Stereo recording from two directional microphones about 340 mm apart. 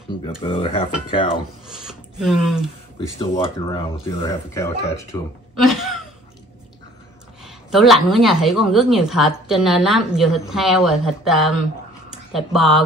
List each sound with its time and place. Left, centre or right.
0.4 s speech: centre
1.7 s speech: centre
3.5 s speech: centre
5.6 s a woman's voice: centre
7.4 s a woman's voice: centre